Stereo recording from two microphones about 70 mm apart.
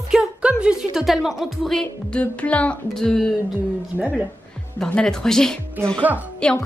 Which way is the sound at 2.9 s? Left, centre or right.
Centre.